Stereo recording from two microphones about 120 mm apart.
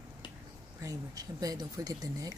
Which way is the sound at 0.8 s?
30° right (ahead or behind).